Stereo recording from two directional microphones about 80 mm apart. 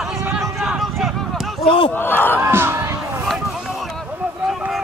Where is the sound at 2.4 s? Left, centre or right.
Right.